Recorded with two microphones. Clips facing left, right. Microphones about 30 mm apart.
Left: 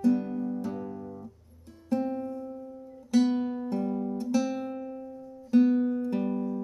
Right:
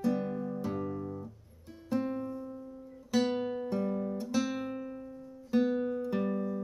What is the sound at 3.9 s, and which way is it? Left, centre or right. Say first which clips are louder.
Guitar: left 3 dB; centre.